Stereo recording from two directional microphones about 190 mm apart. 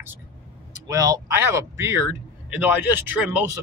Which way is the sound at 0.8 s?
20° right (ahead or behind).